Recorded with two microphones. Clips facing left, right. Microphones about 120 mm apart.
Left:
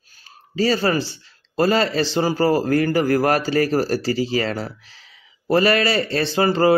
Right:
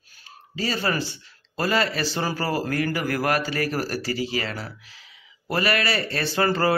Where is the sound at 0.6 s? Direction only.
35° left (ahead or behind).